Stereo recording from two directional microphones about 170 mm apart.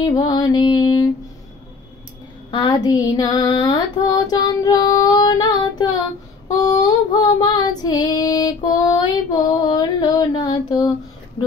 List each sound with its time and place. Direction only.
0.0 s female singing: 25° left (ahead or behind)
2.5 s female singing: 25° left (ahead or behind)
6.5 s child singing: 25° left (ahead or behind)